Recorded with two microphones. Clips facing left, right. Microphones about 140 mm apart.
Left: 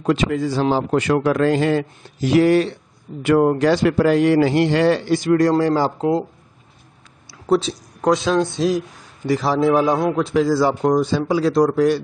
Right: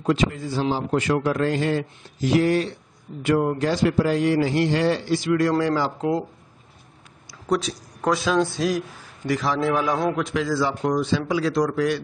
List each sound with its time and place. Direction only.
0.0 s a man's voice: 75° left (ahead or behind); by 5.5 s 45° left (ahead or behind)
5.5 s speech: 35° left (ahead or behind)
7.2 s speech: 30° left (ahead or behind)
9.3 s speech: 35° left (ahead or behind)